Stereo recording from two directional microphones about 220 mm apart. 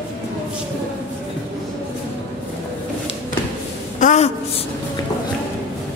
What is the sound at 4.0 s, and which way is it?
Speech, 35° left (ahead or behind).